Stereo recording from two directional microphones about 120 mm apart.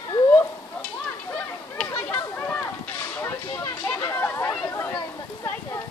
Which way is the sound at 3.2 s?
20° left (ahead or behind).